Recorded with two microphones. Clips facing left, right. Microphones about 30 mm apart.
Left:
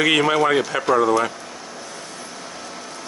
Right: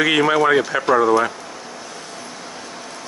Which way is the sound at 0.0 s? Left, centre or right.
Centre.